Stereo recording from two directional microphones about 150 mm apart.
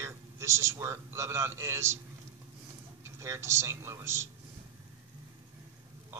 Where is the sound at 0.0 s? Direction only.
20° right (ahead or behind).